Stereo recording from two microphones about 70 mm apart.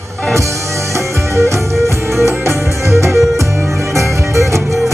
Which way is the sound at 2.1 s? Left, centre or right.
Right.